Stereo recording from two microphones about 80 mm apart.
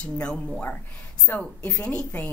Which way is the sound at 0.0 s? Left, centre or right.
Centre.